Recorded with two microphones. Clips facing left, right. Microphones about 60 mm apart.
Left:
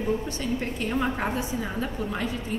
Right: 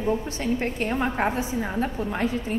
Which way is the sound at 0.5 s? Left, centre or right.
Right.